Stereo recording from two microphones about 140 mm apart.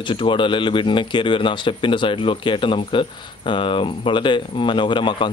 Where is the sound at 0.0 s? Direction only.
35° left (ahead or behind).